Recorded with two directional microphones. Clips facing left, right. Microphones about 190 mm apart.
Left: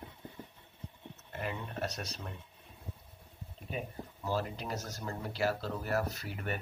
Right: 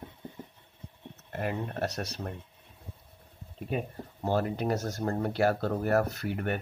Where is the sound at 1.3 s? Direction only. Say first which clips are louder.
Right 6 dB; 65° right (ahead or behind).